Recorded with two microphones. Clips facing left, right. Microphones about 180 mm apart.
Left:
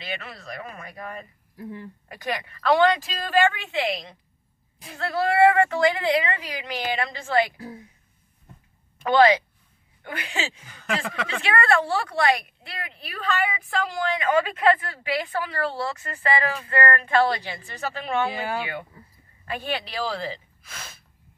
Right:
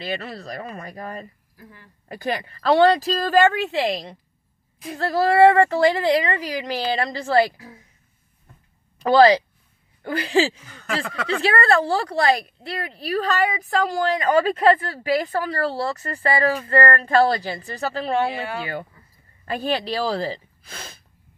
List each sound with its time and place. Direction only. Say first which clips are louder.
0.0 s a woman's voice: right 6 dB; 35° right (ahead or behind)
1.6 s speech: left 11 dB; 25° left (ahead or behind)
2.0 s a woman's voice: right 5 dB; 35° right (ahead or behind)
7.5 s a woman's voice: left 6 dB; 35° left (ahead or behind)
8.9 s a woman's voice: right 4 dB; 35° right (ahead or behind)